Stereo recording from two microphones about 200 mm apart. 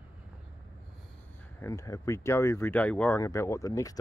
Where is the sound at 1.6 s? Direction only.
15° left (ahead or behind).